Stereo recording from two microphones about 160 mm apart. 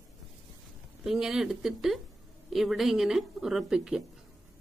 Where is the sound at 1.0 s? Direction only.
5° right (ahead or behind).